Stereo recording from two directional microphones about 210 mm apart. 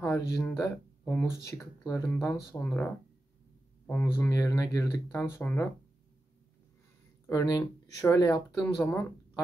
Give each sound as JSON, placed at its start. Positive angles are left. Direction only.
{"t": 0.0, "sound": "speech", "side_deg": 10}
{"t": 7.2, "sound": "speech", "side_deg": 15}